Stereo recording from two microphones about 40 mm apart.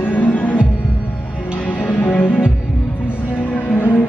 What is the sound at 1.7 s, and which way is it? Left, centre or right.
Music, left.